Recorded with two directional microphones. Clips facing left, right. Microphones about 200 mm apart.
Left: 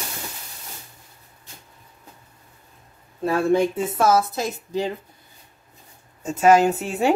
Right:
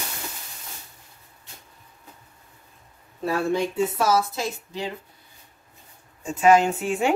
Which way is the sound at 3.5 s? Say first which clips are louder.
Left 3 dB; 50° left (ahead or behind).